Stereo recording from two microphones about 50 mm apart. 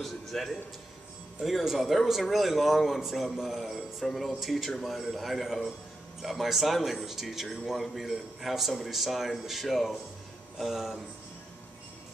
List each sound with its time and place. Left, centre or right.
0.0 s speech: centre
1.4 s speech: centre